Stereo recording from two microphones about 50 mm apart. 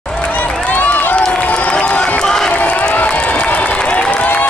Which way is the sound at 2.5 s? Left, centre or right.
Left.